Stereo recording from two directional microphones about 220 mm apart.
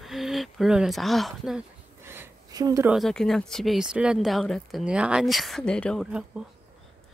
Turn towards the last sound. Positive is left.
turn(degrees=-5)  # may be behind; listen again after turning